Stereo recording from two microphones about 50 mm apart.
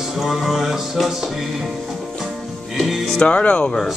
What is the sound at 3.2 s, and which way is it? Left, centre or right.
Speech, left.